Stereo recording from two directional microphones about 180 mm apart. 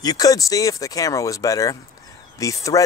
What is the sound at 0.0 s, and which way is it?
Speech, 20° left (ahead or behind).